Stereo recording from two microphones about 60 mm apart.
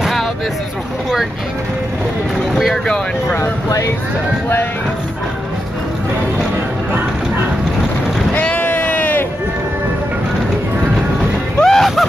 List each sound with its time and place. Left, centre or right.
2.5 s speech: centre
3.3 s speech: left
8.4 s a sound: left
11.6 s music: centre